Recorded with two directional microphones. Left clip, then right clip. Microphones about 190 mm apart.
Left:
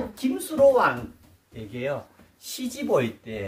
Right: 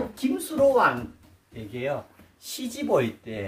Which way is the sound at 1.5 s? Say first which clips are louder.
Even; 15° left (ahead or behind).